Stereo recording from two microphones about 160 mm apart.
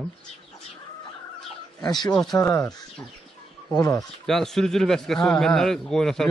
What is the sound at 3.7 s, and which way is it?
Speech, 20° left (ahead or behind).